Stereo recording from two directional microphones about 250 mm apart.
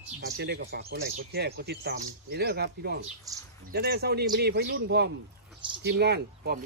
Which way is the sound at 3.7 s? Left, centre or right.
Right.